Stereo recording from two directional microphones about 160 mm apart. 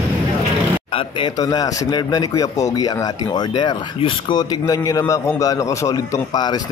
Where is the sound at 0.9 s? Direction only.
30° left (ahead or behind).